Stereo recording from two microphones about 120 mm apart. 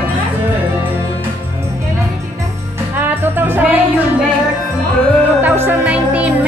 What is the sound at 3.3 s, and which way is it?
Music, 15° right (ahead or behind).